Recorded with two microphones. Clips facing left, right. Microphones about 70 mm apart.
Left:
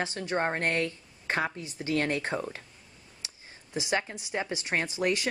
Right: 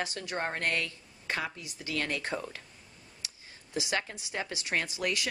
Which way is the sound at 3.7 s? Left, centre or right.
Left.